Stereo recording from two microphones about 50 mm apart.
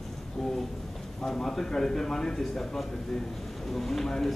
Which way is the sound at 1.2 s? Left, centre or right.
Centre.